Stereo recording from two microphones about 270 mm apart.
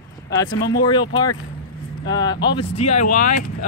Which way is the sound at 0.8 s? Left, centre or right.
Centre.